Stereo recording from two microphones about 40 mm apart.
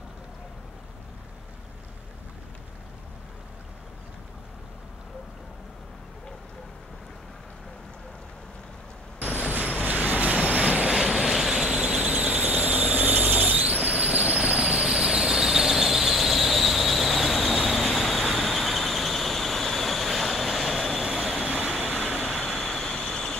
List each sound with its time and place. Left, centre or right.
9.9 s vehicle: right
10.9 s vehicle: centre
11.6 s squeal: right
12.1 s squeal: right
14.4 s squeal: right; by 21.5 s centre
21.6 s vehicle: centre
22.9 s a sound: left